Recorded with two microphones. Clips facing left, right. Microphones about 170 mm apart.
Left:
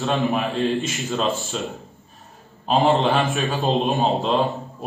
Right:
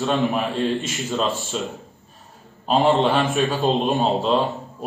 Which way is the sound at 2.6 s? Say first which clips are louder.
Right 1 dB; centre (ahead or behind).